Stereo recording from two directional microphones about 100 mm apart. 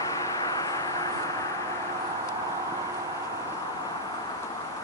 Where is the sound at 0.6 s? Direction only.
35° left (ahead or behind).